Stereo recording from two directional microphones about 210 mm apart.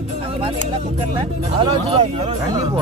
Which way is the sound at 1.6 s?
30° right (ahead or behind).